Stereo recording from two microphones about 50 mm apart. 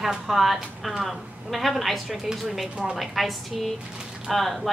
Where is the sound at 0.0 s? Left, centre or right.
Centre.